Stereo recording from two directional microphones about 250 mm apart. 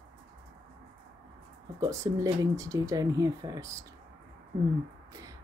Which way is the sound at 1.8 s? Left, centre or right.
Centre.